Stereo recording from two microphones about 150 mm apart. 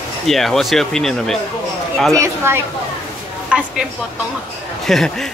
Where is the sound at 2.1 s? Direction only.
15° right (ahead or behind).